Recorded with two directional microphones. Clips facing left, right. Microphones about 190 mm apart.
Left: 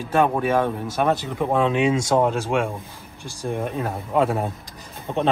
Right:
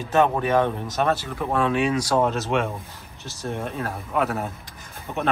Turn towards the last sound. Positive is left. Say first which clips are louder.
# left 5 dB
turn(degrees=25)  # may be behind; listen again after turning